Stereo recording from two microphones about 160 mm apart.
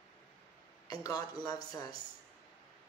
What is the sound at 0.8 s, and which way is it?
Speech, 25° left (ahead or behind).